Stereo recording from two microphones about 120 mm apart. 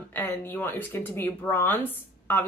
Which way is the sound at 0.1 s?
20° left (ahead or behind).